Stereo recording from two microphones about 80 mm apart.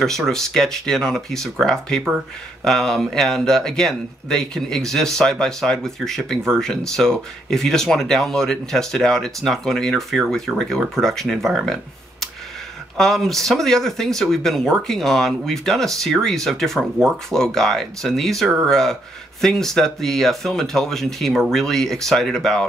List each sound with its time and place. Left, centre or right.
0.0 s speech: centre